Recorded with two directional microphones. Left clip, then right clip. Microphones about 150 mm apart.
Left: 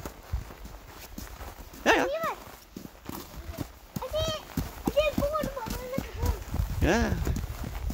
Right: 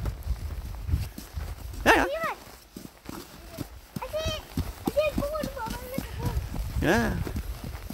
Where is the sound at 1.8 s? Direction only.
50° right (ahead or behind).